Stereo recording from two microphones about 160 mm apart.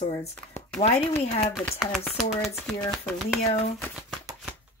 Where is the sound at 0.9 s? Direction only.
15° left (ahead or behind).